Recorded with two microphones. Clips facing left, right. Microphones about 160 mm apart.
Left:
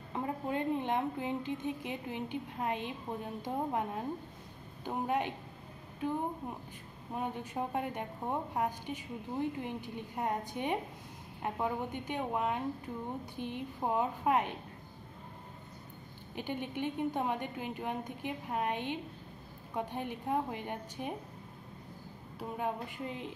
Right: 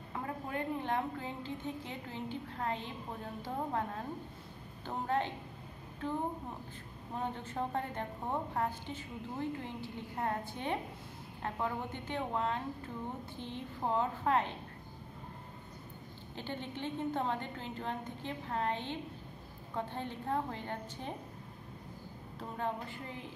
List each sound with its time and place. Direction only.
0.1 s a woman's voice: 20° left (ahead or behind)
7.2 s a woman's voice: 10° left (ahead or behind)
16.3 s a woman's voice: 15° left (ahead or behind)
22.4 s a woman's voice: 15° left (ahead or behind)